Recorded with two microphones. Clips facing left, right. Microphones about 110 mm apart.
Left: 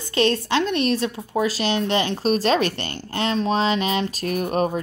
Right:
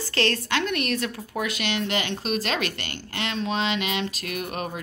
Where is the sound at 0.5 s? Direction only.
25° left (ahead or behind).